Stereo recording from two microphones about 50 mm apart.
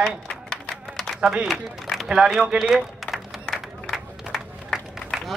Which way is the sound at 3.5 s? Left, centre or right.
Centre.